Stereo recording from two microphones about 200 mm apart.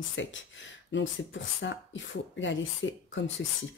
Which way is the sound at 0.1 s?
65° left (ahead or behind).